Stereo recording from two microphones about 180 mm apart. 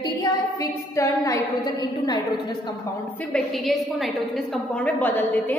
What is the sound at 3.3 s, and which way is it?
A woman's voice, centre (ahead or behind).